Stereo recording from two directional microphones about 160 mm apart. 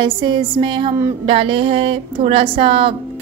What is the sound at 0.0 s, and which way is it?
A woman's voice, 30° right (ahead or behind).